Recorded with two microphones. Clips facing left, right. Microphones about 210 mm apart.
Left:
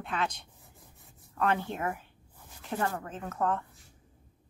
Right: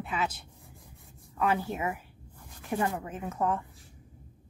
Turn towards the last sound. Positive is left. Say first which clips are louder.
# right 1 dB
turn(degrees=-10)  # may be behind; listen again after turning